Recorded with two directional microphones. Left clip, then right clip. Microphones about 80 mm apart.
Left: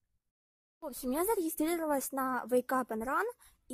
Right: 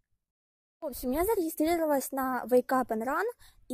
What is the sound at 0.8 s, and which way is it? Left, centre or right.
Speech, right.